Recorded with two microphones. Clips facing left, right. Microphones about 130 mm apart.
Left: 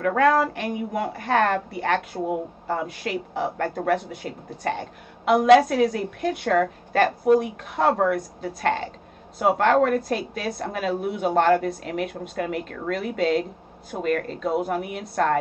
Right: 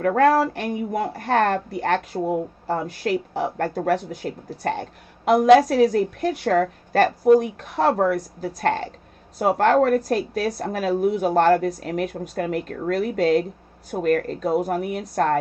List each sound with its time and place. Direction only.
0.0 s speech: 40° right (ahead or behind)